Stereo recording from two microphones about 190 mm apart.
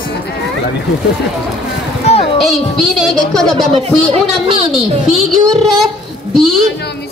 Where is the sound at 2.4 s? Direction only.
Centre (ahead or behind).